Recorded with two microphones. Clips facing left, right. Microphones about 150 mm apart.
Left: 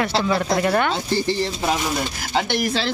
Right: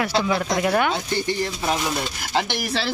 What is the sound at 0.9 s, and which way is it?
Speech, 30° left (ahead or behind).